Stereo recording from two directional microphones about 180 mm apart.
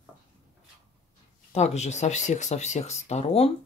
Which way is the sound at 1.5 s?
35° left (ahead or behind).